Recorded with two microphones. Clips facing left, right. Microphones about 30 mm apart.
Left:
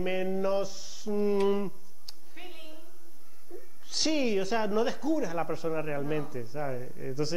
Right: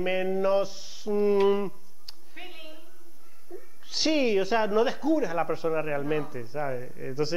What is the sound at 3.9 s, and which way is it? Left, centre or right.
Speech, centre.